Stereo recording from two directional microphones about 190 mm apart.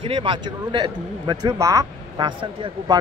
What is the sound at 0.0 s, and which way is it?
A man's voice, 30° right (ahead or behind).